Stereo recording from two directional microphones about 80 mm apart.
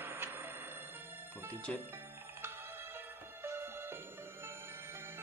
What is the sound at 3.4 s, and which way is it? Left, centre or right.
Music, right.